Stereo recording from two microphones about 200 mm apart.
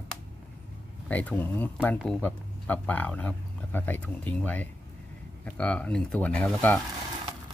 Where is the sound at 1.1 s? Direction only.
10° left (ahead or behind).